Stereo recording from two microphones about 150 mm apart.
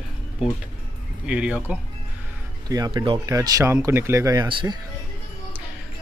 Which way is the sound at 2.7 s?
25° right (ahead or behind).